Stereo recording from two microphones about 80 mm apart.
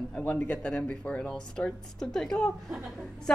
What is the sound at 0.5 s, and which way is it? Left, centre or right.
Speech, centre.